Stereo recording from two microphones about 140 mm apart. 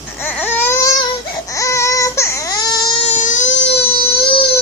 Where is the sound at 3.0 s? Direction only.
60° left (ahead or behind).